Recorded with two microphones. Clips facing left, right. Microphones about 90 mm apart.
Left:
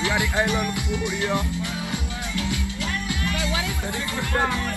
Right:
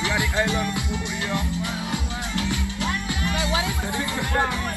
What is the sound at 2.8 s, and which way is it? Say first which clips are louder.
Music: right 1 dB; 25° right (ahead or behind).